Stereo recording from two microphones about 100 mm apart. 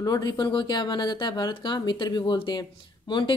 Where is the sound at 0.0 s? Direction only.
40° left (ahead or behind).